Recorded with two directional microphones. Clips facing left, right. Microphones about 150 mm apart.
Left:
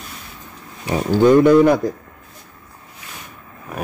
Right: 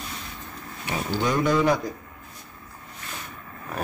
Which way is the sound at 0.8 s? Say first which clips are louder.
Left 12 dB; 50° left (ahead or behind).